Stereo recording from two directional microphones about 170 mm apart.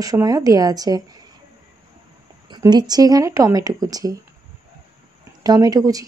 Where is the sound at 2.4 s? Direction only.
25° right (ahead or behind).